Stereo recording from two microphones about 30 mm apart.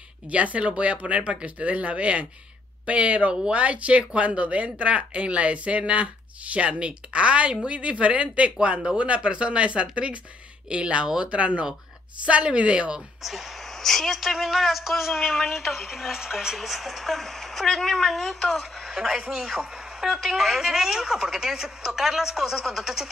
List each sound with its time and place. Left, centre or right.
0.3 s speech: right
13.2 s speech: centre
13.7 s a sound: centre
14.1 s speech: centre
16.5 s speech: centre
18.9 s speech: centre
19.3 s a man's voice: right
20.1 s speech: centre